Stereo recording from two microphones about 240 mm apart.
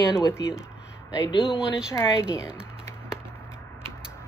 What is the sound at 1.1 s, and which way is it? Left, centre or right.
Speech, centre.